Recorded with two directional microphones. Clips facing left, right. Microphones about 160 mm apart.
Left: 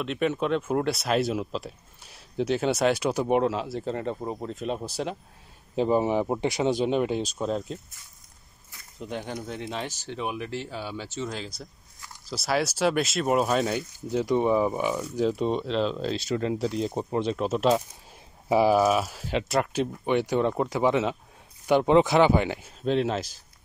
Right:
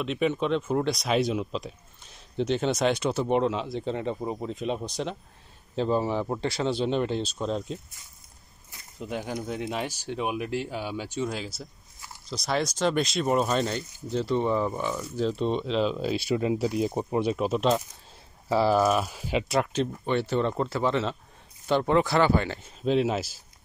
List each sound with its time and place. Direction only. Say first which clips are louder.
0.0 s speech: even; centre (ahead or behind)
5.8 s speech: left 3 dB; 15° left (ahead or behind)
9.0 s speech: right 1 dB; 5° right (ahead or behind)
12.3 s speech: left 1 dB; 5° left (ahead or behind)
17.5 s speech: left 1 dB; 5° left (ahead or behind)
18.8 s speech: left 1 dB; centre (ahead or behind)
22.7 s speech: right 4 dB; 5° right (ahead or behind)